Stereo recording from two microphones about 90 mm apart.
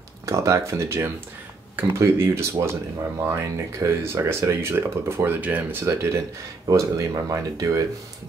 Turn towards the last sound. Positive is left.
turn(degrees=-40)  # may be behind; listen again after turning